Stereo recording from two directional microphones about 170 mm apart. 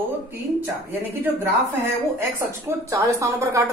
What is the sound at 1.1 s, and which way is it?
A woman's voice, 10° right (ahead or behind).